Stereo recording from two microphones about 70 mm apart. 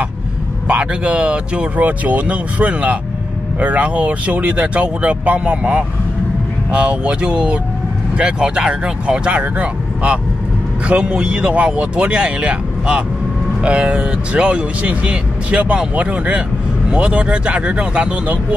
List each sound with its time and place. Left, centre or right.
0.7 s speech: centre